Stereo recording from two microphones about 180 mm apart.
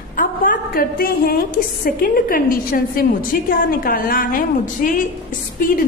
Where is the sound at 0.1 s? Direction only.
50° left (ahead or behind).